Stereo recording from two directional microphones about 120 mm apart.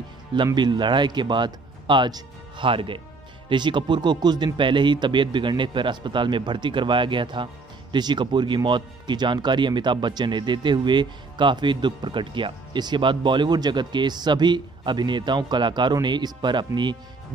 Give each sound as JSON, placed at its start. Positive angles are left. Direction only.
{"t": 0.6, "sound": "speech", "side_deg": -40}